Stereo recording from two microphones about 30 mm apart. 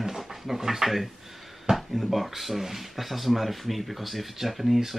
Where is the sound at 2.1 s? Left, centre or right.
Centre.